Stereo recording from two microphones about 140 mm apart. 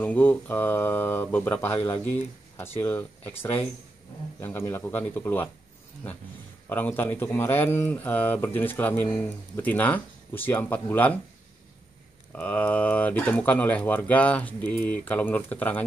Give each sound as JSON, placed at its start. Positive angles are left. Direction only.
{"t": 0.0, "sound": "speech", "side_deg": 10}
{"t": 2.5, "sound": "speech", "side_deg": 15}
{"t": 6.7, "sound": "speech", "side_deg": 15}
{"t": 12.3, "sound": "speech", "side_deg": 10}